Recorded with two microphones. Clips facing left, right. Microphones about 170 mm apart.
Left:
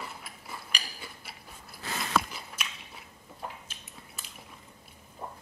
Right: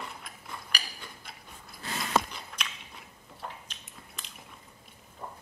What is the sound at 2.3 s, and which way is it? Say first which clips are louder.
Biting: even; 5° left (ahead or behind).